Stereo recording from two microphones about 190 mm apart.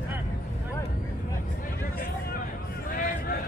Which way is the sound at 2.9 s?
50° left (ahead or behind).